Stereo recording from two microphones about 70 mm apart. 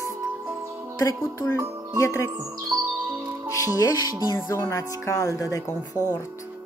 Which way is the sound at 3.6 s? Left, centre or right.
Left.